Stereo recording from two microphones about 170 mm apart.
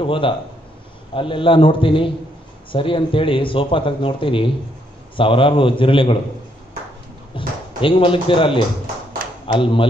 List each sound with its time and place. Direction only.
0.0 s a man's voice: 30° left (ahead or behind)
7.3 s speech: 30° left (ahead or behind)
9.6 s a man's voice: 30° left (ahead or behind)